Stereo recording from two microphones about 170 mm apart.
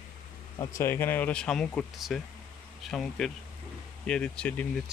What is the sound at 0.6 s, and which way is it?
Speech, 20° left (ahead or behind).